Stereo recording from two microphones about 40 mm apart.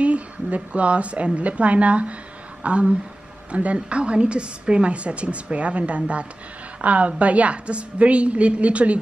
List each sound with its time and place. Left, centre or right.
0.0 s a woman's voice: right